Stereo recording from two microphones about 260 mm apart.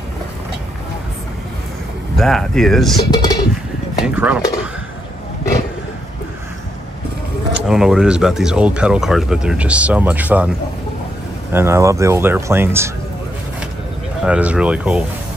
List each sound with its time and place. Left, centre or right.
2.1 s speech: centre
3.1 s speech: centre
4.0 s speech: centre
7.5 s speech: centre
11.5 s speech: centre
14.2 s speech: centre